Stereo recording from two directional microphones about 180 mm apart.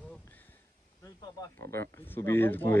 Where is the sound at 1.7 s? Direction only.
15° left (ahead or behind).